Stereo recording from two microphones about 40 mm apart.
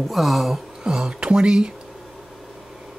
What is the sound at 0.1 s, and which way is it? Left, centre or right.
Speech, centre.